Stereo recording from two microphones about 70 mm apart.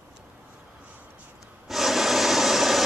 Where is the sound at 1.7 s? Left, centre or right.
Centre.